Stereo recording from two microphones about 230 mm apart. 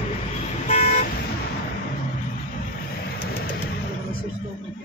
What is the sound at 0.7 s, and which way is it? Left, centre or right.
Car, left.